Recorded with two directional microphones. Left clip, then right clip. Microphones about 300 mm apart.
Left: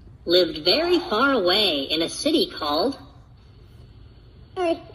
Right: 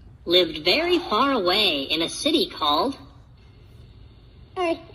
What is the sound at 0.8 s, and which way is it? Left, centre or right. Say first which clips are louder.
Speech: left 1 dB; centre.